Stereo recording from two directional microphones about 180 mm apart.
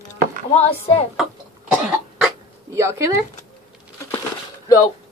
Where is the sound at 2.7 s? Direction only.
15° right (ahead or behind).